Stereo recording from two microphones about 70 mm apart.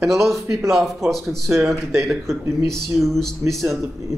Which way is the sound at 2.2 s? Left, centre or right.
Right.